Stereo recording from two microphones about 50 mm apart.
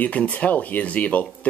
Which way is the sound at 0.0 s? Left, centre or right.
Left.